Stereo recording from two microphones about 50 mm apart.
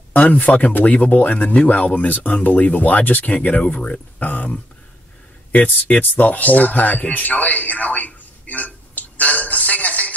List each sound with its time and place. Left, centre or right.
0.1 s speech: left